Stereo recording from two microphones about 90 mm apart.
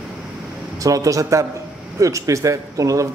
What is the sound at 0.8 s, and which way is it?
Speech, 40° right (ahead or behind).